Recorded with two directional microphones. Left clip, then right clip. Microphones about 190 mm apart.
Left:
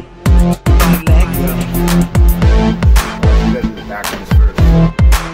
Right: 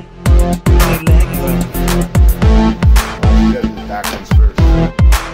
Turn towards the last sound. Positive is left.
turn(degrees=0)  # may be behind; listen again after turning